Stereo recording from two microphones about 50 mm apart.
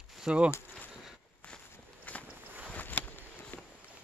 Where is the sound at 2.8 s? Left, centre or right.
Left.